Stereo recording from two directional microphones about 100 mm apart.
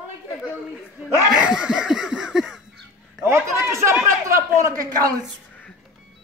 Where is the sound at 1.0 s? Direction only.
5° right (ahead or behind).